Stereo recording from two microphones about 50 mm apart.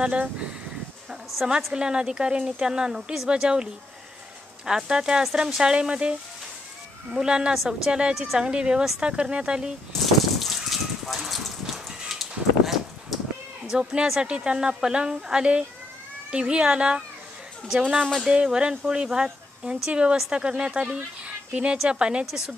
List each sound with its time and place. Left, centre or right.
0.0 s speech: right
1.7 s speech: centre
4.6 s speech: centre
7.2 s speech: centre
7.5 s a woman's voice: centre
8.5 s speech: centre
9.9 s a sound: centre
13.7 s speech: centre
18.2 s speech: centre
21.3 s a sound: right
21.8 s speech: centre